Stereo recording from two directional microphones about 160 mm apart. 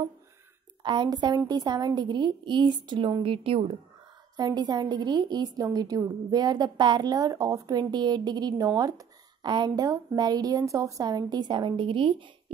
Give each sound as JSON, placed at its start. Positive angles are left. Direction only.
{"t": 0.8, "sound": "a woman's voice", "side_deg": -30}